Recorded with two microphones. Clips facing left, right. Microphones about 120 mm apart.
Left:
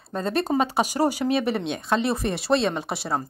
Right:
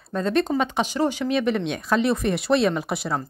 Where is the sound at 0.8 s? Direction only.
10° left (ahead or behind).